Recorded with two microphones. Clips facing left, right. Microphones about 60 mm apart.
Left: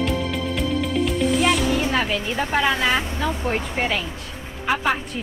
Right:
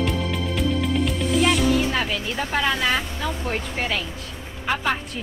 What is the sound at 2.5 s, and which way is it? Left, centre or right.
Speech, centre.